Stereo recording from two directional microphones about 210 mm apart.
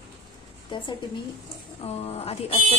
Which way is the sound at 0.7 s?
25° left (ahead or behind).